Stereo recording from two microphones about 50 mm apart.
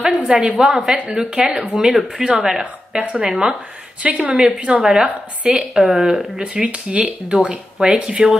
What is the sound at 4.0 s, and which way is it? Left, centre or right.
Speech, right.